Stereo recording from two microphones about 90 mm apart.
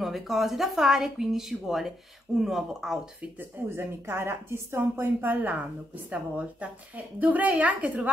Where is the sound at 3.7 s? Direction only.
25° right (ahead or behind).